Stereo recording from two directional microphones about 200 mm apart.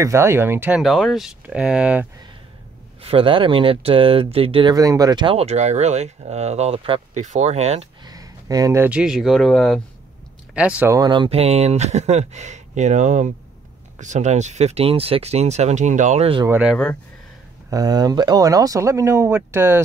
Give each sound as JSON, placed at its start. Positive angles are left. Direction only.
{"t": 0.0, "sound": "speech", "side_deg": -15}
{"t": 3.0, "sound": "speech", "side_deg": -30}
{"t": 8.0, "sound": "speech", "side_deg": -20}
{"t": 10.5, "sound": "speech", "side_deg": -5}
{"t": 16.4, "sound": "speech", "side_deg": -5}
{"t": 17.6, "sound": "speech", "side_deg": -20}